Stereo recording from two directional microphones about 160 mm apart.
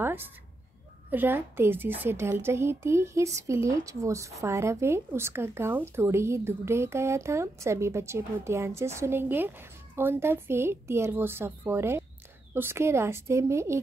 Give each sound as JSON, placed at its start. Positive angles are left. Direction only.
{"t": 0.0, "sound": "cat", "side_deg": -15}
{"t": 1.1, "sound": "a woman's voice", "side_deg": -15}